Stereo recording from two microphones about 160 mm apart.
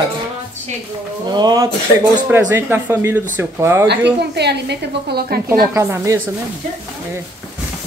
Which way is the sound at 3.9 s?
90° right.